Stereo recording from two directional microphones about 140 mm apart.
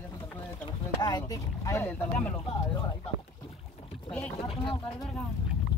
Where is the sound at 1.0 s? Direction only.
25° left (ahead or behind).